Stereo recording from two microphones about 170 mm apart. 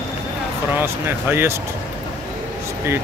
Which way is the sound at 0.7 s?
15° right (ahead or behind).